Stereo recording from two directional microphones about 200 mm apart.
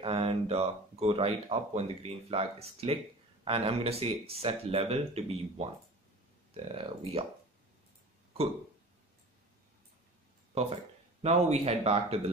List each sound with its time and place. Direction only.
0.0 s speech: 30° right (ahead or behind)
10.5 s speech: 30° right (ahead or behind)